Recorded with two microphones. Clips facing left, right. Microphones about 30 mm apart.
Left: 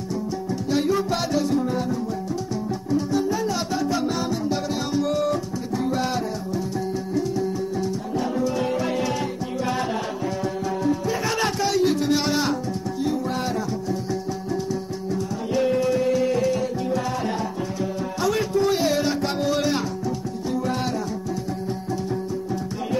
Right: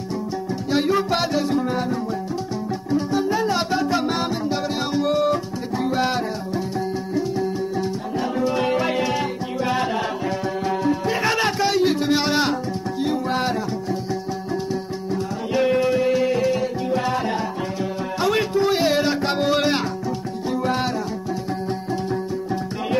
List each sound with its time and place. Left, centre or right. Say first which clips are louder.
0.7 s music: right 2 dB; right
2.9 s music: right 2 dB; right
8.2 s music: right 3 dB; right
9.0 s music: right 2 dB; right
11.3 s a sound: right 2 dB; right
13.0 s music: right 3 dB; right
15.5 s music: right 2 dB; right
18.2 s music: right 2 dB; right